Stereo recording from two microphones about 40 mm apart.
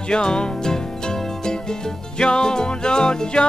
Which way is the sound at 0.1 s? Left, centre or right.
Left.